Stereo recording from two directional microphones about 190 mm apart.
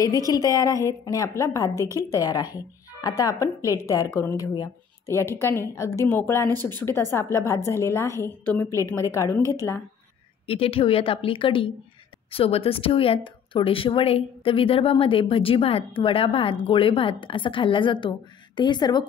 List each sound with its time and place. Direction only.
0.3 s a woman's voice: 20° left (ahead or behind)
10.4 s speech: 30° left (ahead or behind)